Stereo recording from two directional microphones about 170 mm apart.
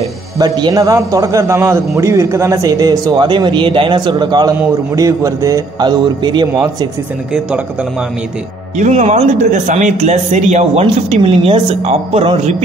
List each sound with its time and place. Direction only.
0.4 s a man's voice: 25° right (ahead or behind)
8.7 s speech: 40° right (ahead or behind)